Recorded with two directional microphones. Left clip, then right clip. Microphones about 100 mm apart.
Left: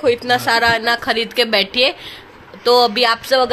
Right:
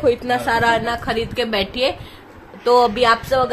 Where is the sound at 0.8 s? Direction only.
35° left (ahead or behind).